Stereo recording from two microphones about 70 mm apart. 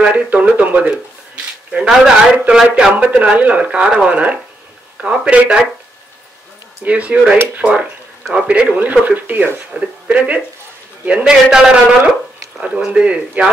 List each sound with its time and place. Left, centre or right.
0.0 s speech: centre
6.8 s speech: centre